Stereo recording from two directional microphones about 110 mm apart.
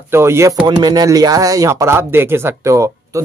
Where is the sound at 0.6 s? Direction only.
40° right (ahead or behind).